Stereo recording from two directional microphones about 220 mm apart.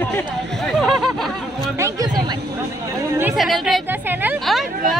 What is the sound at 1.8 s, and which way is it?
Speech, 15° right (ahead or behind).